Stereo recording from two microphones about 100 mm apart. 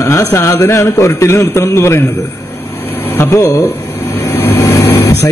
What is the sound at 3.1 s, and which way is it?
A man's voice, 30° left (ahead or behind).